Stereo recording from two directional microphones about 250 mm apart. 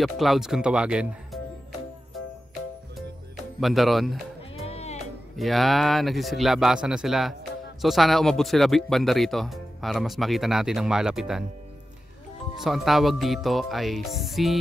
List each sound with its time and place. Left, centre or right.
0.0 s speech: centre
3.6 s speech: centre
4.4 s music: left
5.4 s speech: centre
12.5 s speech: centre